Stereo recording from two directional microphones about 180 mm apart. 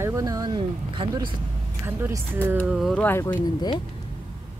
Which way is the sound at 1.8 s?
15° right (ahead or behind).